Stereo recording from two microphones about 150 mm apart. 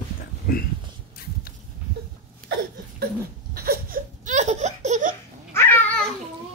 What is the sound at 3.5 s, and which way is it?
Laughter, 90° right.